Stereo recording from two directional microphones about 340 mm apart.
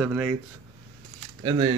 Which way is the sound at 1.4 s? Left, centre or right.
Centre.